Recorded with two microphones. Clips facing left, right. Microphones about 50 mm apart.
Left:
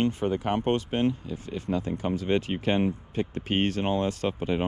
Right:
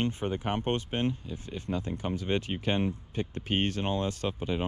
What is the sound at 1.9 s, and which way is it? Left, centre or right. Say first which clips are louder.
Speech: left 4 dB; left.